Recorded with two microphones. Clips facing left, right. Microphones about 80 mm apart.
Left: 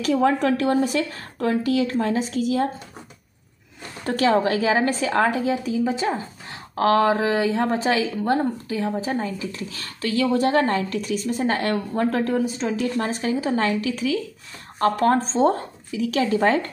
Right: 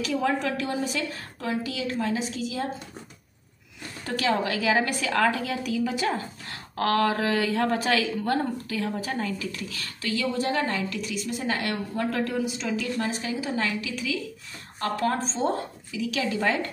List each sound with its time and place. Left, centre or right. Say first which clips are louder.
0.0 s a woman's voice: left 6 dB; left
4.0 s a woman's voice: left 6 dB; left